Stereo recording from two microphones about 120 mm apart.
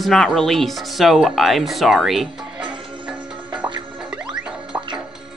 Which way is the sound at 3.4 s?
40° right (ahead or behind).